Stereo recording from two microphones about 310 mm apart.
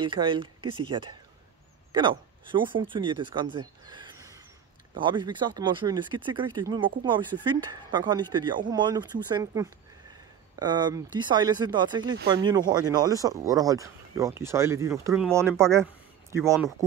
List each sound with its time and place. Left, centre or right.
0.0 s speech: centre